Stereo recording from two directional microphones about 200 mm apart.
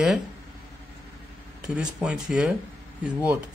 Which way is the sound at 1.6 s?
5° right (ahead or behind).